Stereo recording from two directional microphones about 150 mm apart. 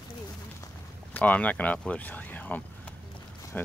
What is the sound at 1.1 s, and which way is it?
Speech, 10° left (ahead or behind).